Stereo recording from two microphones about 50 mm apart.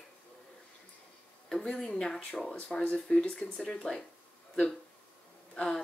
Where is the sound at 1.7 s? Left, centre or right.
Centre.